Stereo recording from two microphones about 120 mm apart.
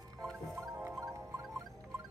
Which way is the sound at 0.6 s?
20° right (ahead or behind).